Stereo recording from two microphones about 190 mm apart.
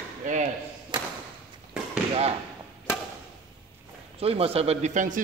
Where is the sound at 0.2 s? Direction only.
40° right (ahead or behind).